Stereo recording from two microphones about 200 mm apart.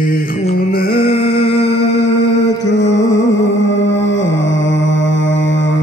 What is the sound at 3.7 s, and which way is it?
Mantra, 65° left (ahead or behind).